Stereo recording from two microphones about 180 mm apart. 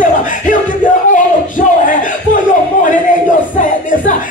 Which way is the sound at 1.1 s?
45° left (ahead or behind).